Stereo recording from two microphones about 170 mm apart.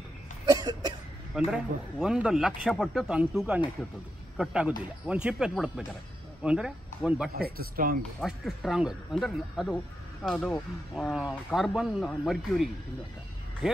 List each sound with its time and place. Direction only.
0.5 s cough: 25° right (ahead or behind)
1.3 s a man's voice: 5° right (ahead or behind)
7.3 s speech: 65° right (ahead or behind)
8.2 s a man's voice: centre (ahead or behind)